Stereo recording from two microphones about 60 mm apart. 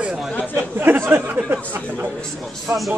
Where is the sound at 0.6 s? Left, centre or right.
Right.